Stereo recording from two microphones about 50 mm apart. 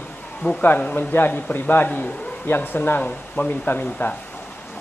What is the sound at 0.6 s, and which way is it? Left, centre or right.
A man's voice, left.